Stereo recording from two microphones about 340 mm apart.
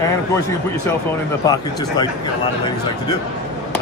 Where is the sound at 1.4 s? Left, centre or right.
Centre.